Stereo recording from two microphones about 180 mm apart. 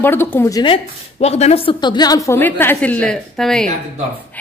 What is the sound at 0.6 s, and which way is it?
A woman's voice, 30° left (ahead or behind).